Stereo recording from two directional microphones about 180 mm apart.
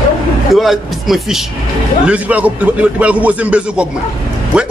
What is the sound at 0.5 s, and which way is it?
A man's voice, centre (ahead or behind).